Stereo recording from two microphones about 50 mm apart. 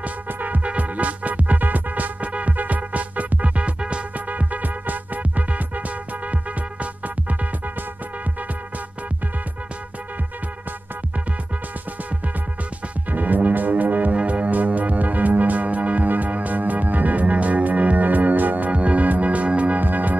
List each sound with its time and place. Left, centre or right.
0.0 s music: right
13.1 s music: right